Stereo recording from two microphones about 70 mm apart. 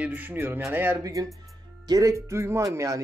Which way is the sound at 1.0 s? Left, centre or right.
Right.